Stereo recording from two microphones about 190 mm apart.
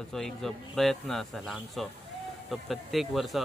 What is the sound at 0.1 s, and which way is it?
Speech, centre (ahead or behind).